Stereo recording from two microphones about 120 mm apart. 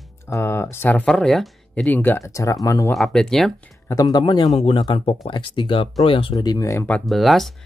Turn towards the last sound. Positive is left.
turn(degrees=0)  # may be behind; listen again after turning